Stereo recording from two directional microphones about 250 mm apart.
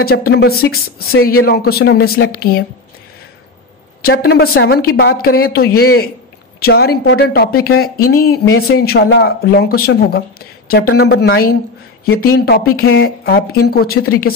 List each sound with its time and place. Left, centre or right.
0.0 s speech: left
4.0 s speech: left
12.7 s speech: left